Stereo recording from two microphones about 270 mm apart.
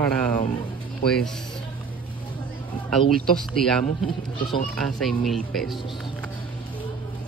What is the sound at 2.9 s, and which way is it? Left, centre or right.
Speech, centre.